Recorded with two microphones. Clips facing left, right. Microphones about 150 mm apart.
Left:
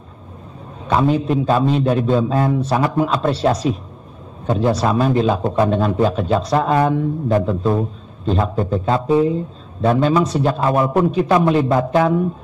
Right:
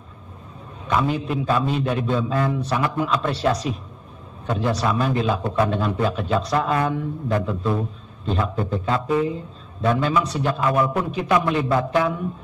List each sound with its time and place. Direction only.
0.8 s a man's voice: 35° left (ahead or behind)
4.5 s a man's voice: 25° left (ahead or behind)